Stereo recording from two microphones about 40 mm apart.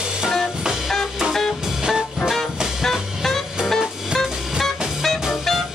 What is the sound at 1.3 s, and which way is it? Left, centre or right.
Music, centre.